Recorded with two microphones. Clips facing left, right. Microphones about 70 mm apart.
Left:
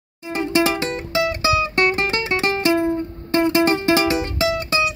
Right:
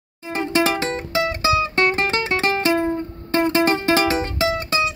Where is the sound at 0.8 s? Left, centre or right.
Right.